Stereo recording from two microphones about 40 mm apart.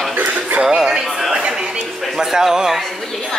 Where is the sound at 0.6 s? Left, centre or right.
Centre.